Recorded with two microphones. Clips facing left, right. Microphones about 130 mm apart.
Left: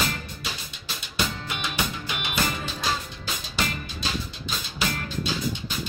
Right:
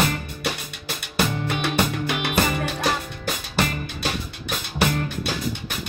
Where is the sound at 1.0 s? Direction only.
60° right (ahead or behind).